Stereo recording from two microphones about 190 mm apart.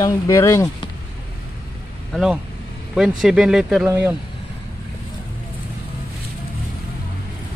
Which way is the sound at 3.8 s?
15° right (ahead or behind).